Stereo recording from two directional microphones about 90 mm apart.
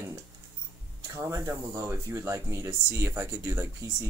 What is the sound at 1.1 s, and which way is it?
Speech, 35° right (ahead or behind).